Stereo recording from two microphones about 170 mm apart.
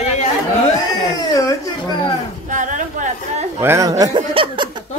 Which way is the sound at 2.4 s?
50° right (ahead or behind).